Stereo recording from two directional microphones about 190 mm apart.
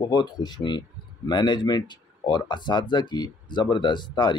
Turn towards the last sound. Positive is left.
turn(degrees=25)  # may be behind; listen again after turning